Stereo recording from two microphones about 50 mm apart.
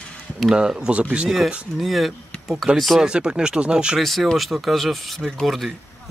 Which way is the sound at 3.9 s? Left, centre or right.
Centre.